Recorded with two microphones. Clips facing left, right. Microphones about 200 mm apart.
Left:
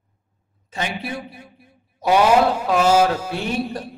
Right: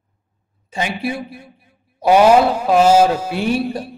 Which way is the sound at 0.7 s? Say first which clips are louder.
Right 5 dB; 10° right (ahead or behind).